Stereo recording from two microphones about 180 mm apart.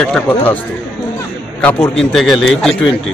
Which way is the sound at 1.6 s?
10° left (ahead or behind).